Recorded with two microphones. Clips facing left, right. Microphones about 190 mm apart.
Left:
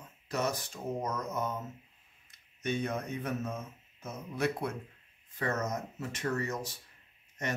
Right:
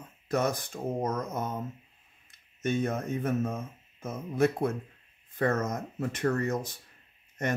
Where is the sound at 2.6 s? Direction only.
50° right (ahead or behind).